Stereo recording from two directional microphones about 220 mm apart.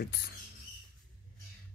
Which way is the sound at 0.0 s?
45° left (ahead or behind).